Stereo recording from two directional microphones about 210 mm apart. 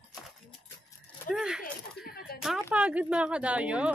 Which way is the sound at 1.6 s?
45° left (ahead or behind).